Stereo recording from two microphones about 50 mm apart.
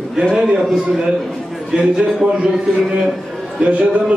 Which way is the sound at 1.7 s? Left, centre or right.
Centre.